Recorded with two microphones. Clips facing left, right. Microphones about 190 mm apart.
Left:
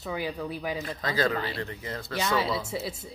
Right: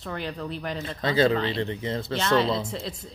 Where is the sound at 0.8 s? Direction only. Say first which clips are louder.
Right 7 dB; 25° right (ahead or behind).